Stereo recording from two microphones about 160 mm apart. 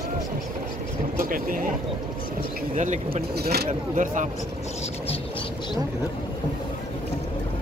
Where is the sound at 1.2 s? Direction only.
60° right (ahead or behind).